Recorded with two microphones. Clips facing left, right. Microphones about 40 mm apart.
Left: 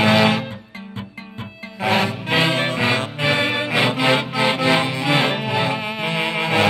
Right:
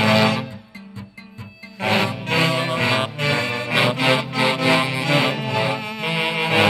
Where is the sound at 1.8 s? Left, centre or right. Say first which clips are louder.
Left 1 dB; centre.